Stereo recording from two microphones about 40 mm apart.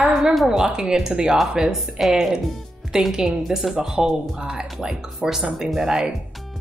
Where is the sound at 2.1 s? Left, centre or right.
Centre.